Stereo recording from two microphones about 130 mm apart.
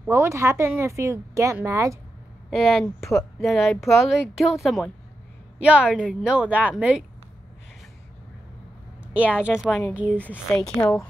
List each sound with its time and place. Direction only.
0.0 s a woman's voice: 20° right (ahead or behind)
2.5 s a woman's voice: centre (ahead or behind)
9.0 s a woman's voice: 10° right (ahead or behind)
10.2 s a woman's voice: 15° left (ahead or behind)